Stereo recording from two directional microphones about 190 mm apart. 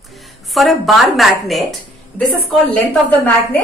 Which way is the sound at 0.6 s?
Centre (ahead or behind).